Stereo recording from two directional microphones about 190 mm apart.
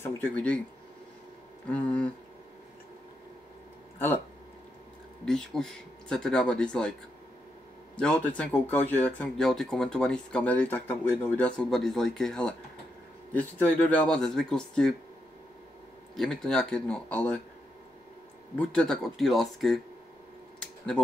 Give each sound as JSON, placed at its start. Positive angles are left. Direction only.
{"t": 0.0, "sound": "speech", "side_deg": 10}
{"t": 1.7, "sound": "speech", "side_deg": 5}
{"t": 5.2, "sound": "speech", "side_deg": 5}
{"t": 7.9, "sound": "speech", "side_deg": 5}
{"t": 16.2, "sound": "speech", "side_deg": 0}
{"t": 18.6, "sound": "speech", "side_deg": 5}
{"t": 20.5, "sound": "a sound", "side_deg": 5}